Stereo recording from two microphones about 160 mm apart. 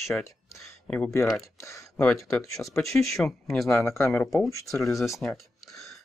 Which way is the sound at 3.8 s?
20° left (ahead or behind).